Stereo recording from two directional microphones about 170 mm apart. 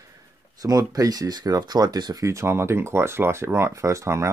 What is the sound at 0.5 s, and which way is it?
Speech, 20° right (ahead or behind).